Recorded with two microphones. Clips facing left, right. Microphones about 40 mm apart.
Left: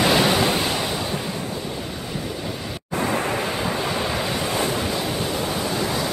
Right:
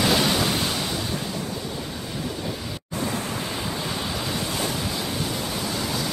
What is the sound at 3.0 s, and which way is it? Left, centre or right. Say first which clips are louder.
Waves: left 6 dB; left.